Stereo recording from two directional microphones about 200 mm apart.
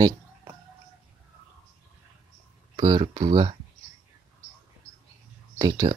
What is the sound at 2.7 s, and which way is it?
Speech, 25° right (ahead or behind).